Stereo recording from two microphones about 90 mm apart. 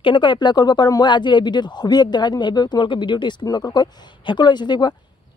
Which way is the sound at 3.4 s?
50° left (ahead or behind).